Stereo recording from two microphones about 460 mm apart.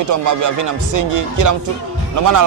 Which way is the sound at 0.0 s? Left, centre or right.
Right.